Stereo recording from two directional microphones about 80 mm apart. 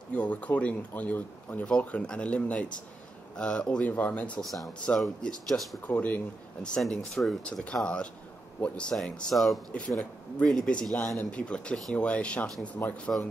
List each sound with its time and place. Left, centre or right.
0.1 s speech: centre
4.4 s speech: centre
5.9 s speech: centre
7.1 s speech: centre
7.6 s speech: centre
9.7 s speech: centre